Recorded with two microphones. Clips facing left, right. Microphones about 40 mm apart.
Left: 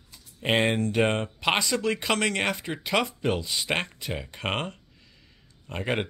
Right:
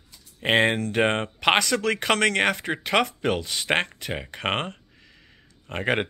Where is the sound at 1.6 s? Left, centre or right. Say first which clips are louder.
Right 3 dB; right.